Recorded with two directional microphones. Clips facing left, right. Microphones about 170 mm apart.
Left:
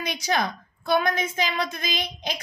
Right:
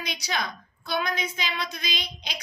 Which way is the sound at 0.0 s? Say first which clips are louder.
Left 6 dB; 50° left (ahead or behind).